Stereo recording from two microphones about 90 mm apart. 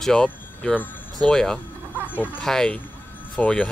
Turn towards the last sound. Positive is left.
turn(degrees=15)  # may be behind; listen again after turning